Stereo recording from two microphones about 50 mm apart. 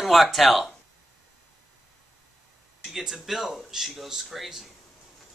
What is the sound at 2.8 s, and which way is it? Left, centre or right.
Speech, centre.